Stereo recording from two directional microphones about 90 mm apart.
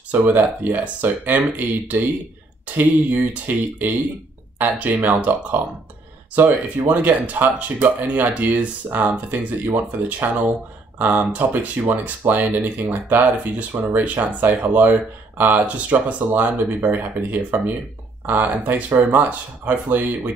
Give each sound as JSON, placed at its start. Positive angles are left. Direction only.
{"t": 0.1, "sound": "speech", "side_deg": -20}